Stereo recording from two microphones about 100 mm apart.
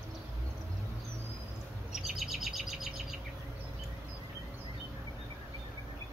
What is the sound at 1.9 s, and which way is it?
Chirp, 5° right (ahead or behind).